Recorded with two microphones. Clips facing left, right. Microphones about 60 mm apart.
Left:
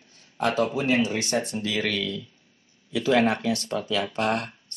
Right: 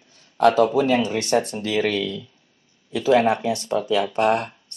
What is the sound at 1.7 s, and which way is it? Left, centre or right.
Speech, right.